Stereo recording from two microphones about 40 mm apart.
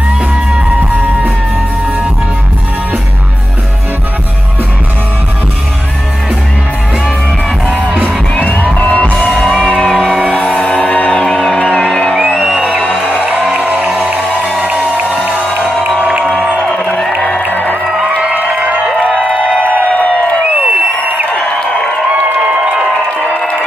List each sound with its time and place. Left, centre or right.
0.7 s music: right
8.4 s music: left
9.2 s music: centre
10.3 s music: left; by 13.2 s centre
13.8 s music: centre
14.6 s music: right
16.5 s music: centre
17.5 s music: left
18.0 s music: right
19.4 s a sound: left
20.5 s crowd: right
21.3 s a sound: left
22.4 s crowd: centre